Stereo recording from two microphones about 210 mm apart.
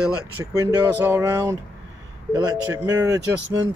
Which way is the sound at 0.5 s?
15° right (ahead or behind).